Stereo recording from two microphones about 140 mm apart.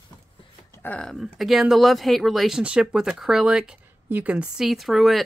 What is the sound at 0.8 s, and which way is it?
Speech, 10° left (ahead or behind).